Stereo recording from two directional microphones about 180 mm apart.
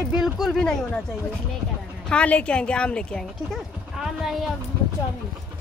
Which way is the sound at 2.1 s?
5° left (ahead or behind).